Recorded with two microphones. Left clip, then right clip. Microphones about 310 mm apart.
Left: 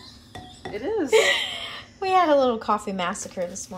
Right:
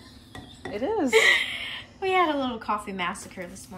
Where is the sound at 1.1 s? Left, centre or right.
Centre.